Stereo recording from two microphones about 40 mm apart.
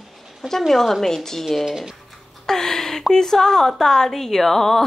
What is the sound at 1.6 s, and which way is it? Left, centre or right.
Speech, centre.